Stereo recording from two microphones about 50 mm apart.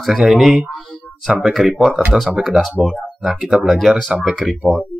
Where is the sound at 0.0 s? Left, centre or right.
Centre.